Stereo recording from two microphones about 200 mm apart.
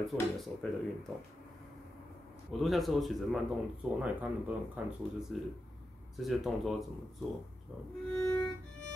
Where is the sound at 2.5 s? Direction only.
Centre (ahead or behind).